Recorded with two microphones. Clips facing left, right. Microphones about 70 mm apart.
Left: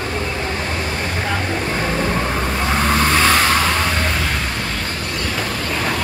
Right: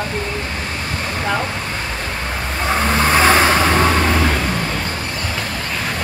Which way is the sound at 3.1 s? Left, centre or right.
Right.